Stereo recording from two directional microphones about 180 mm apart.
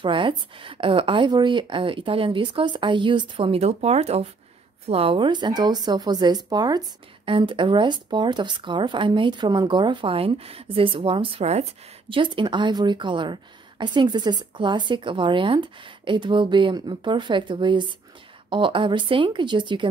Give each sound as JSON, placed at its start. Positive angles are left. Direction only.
{"t": 0.0, "sound": "speech", "side_deg": -30}